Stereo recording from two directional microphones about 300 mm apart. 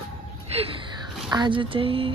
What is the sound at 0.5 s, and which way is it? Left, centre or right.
Gasp, centre.